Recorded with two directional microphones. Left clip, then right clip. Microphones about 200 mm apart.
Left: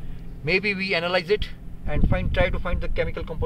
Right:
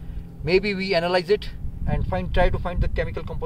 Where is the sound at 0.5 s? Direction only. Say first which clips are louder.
Right 1 dB; 55° right (ahead or behind).